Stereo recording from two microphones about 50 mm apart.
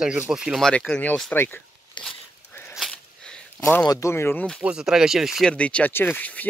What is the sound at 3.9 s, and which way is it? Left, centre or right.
Speech, left.